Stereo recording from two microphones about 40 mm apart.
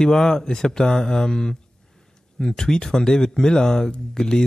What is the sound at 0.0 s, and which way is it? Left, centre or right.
Speech, centre.